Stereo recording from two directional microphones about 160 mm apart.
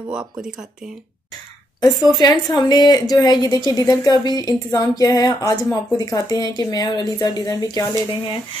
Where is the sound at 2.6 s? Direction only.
25° left (ahead or behind).